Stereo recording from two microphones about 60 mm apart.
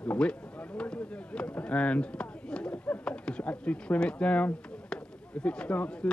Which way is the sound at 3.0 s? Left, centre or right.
Centre.